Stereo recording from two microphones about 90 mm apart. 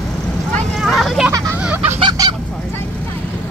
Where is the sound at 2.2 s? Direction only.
40° right (ahead or behind).